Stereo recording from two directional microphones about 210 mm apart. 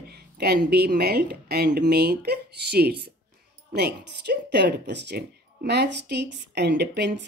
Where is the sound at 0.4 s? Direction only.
50° right (ahead or behind).